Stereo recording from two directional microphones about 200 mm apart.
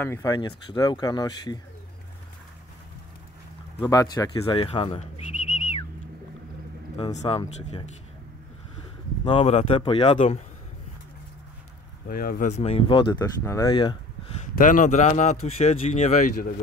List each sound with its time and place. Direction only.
0.0 s speech: 15° left (ahead or behind)
3.8 s speech: 20° left (ahead or behind)
7.0 s speech: 30° left (ahead or behind)
9.2 s speech: 25° left (ahead or behind)
12.1 s speech: 45° left (ahead or behind); by 13.9 s 25° left (ahead or behind)
14.4 s speech: 40° left (ahead or behind)